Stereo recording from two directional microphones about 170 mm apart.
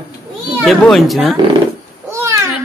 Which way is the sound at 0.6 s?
Centre (ahead or behind).